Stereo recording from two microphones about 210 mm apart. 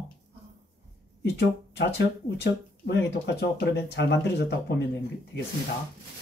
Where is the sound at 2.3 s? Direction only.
55° left (ahead or behind).